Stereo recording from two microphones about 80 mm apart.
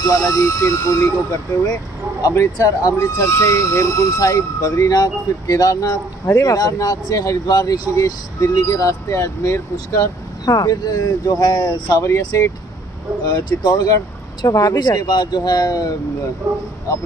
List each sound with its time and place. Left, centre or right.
0.0 s speech: left
2.2 s speech: left
7.9 s speech: left
12.2 s speech: left
13.3 s speech: left
13.7 s speech: left